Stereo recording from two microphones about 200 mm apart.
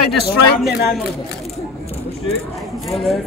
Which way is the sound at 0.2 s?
55° left (ahead or behind).